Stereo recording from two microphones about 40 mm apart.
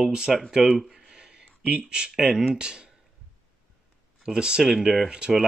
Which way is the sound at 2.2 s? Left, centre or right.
Centre.